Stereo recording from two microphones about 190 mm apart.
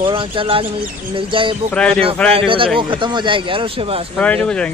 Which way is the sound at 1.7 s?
5° left (ahead or behind).